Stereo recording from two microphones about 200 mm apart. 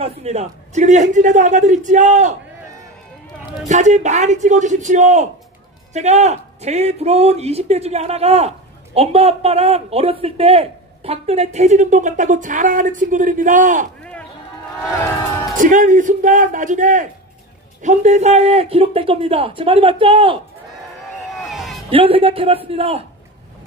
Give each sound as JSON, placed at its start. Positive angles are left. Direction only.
{"t": 0.0, "sound": "a man's voice", "side_deg": -30}
{"t": 3.6, "sound": "a man's voice", "side_deg": -35}
{"t": 15.5, "sound": "a man's voice", "side_deg": -40}
{"t": 21.9, "sound": "a man's voice", "side_deg": -25}